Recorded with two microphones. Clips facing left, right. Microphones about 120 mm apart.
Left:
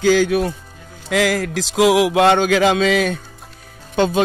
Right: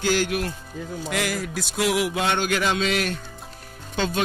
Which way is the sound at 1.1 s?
90° left.